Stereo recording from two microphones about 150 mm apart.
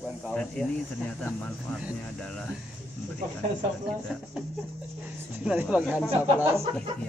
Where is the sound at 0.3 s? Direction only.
5° left (ahead or behind).